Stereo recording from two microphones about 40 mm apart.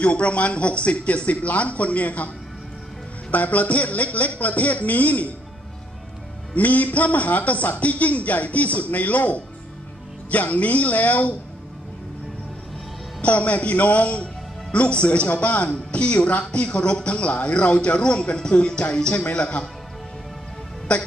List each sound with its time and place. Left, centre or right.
0.0 s a man's voice: left
6.5 s a man's voice: left
13.2 s a man's voice: left
16.6 s music: left
17.3 s a man's voice: left
18.4 s music: left
20.9 s a man's voice: left